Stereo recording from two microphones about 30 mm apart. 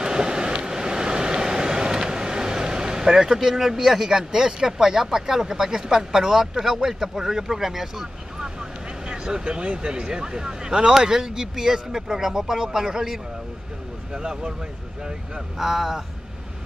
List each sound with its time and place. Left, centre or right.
0.0 s vehicle: right
8.4 s speech: right
10.9 s speech: centre
14.1 s speech: right
15.5 s speech: centre